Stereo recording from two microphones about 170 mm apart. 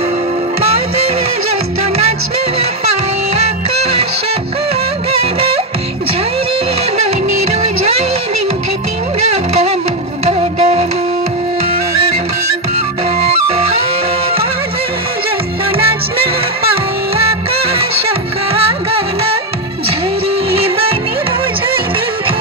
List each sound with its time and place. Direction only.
10.2 s music: 40° right (ahead or behind)